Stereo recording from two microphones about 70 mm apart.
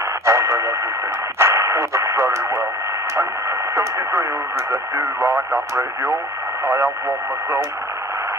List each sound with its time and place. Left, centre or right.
0.2 s radio: right
1.4 s speech: right
3.7 s speech: right